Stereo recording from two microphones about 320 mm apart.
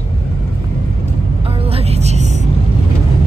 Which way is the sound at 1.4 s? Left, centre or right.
Centre.